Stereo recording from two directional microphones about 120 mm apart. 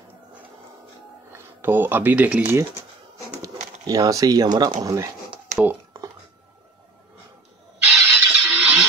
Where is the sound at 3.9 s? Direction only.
30° right (ahead or behind).